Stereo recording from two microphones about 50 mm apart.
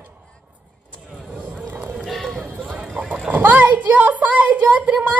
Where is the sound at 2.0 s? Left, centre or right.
Centre.